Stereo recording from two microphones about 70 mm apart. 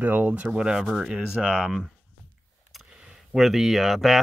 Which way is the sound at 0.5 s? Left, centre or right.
Centre.